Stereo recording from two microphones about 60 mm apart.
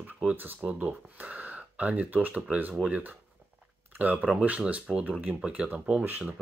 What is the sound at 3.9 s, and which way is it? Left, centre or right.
Speech, right.